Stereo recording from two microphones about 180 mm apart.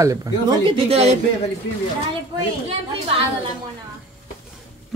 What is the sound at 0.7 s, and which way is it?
Speech, 30° right (ahead or behind).